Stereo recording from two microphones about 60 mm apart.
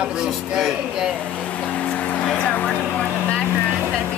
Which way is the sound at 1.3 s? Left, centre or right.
Centre.